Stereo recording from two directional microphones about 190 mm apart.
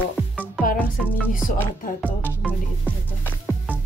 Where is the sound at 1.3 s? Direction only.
45° left (ahead or behind).